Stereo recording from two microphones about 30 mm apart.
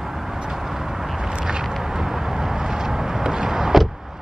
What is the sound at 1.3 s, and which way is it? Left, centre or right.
Vehicle, right.